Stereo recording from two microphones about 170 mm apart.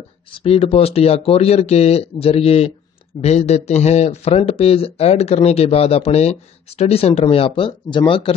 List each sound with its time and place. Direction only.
0.3 s speech: 35° left (ahead or behind)